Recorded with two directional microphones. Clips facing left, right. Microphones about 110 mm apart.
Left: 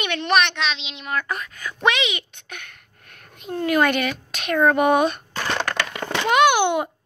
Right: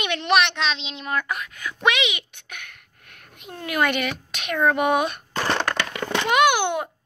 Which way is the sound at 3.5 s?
5° right (ahead or behind).